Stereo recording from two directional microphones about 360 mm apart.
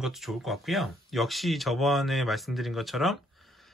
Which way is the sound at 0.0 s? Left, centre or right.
Centre.